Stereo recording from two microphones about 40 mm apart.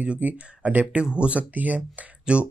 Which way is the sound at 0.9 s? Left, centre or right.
Right.